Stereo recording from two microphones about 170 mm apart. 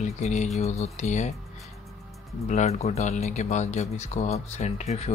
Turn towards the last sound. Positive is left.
turn(degrees=40)  # may be behind; listen again after turning